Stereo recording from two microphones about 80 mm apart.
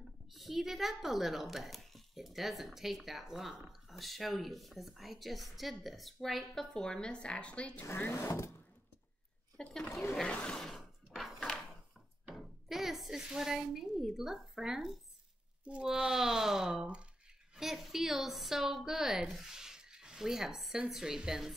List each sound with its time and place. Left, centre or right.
0.3 s speech: centre
7.8 s speech: left
9.6 s speech: centre
10.2 s mechanisms: centre
10.8 s a sound: centre
12.4 s speech: centre